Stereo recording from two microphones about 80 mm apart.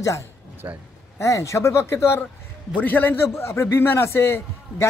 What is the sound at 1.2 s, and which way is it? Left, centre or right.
A man's voice, left.